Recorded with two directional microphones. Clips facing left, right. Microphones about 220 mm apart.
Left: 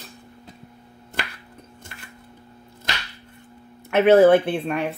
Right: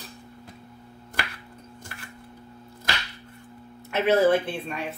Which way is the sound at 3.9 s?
60° left (ahead or behind).